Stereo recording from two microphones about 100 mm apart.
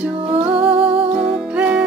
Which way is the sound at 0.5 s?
65° right (ahead or behind).